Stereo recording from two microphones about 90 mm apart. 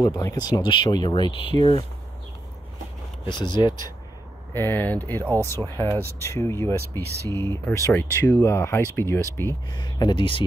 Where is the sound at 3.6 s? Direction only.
60° left (ahead or behind).